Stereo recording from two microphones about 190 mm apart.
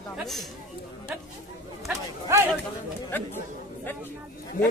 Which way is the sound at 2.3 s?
15° right (ahead or behind).